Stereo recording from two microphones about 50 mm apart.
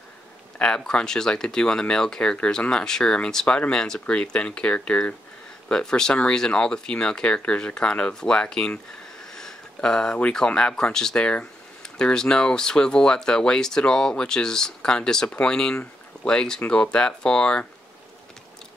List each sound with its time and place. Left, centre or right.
0.6 s speech: centre
9.2 s a sound: centre
9.8 s speech: centre